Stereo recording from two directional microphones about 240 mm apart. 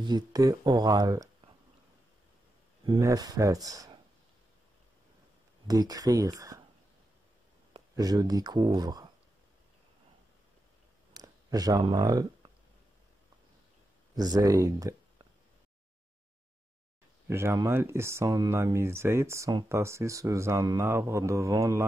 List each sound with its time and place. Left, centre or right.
0.0 s speech: centre
2.9 s speech: centre
5.7 s speech: centre
7.9 s speech: centre
11.1 s speech: centre
14.1 s speech: centre
17.3 s speech: centre